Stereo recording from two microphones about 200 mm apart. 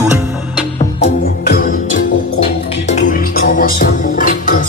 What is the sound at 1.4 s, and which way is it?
Music, 45° left (ahead or behind).